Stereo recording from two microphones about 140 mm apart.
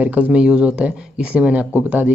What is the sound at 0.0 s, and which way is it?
Speech, 10° right (ahead or behind).